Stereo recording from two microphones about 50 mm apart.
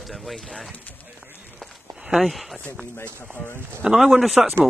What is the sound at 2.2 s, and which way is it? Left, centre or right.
Speech, centre.